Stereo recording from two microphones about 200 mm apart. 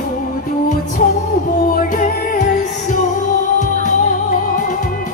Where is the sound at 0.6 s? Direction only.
45° left (ahead or behind).